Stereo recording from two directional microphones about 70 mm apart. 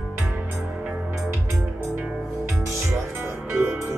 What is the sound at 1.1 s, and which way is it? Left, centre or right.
Music, centre.